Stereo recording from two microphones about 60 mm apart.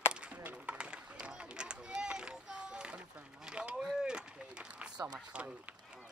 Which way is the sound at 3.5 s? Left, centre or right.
Centre.